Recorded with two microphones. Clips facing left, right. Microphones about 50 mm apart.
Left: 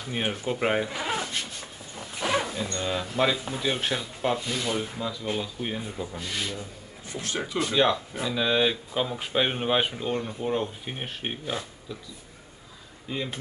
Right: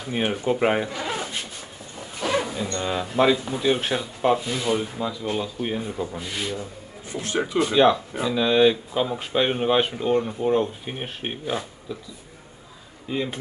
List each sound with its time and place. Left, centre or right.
0.0 s speech: centre
0.8 s a sound: centre
2.0 s dog: centre
2.4 s speech: centre
6.6 s a man's voice: right
7.7 s speech: centre
13.1 s speech: centre